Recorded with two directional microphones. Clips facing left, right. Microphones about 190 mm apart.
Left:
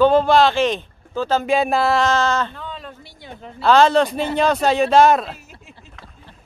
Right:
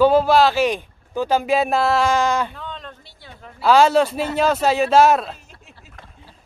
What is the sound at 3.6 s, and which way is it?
A man's voice, 10° right (ahead or behind).